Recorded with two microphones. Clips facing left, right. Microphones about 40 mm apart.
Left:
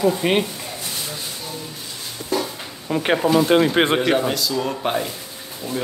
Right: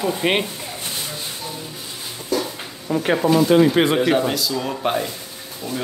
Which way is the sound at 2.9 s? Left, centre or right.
Left.